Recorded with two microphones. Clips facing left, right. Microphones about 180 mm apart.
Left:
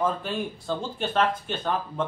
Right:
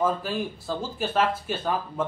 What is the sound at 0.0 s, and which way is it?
A man's voice, 5° right (ahead or behind).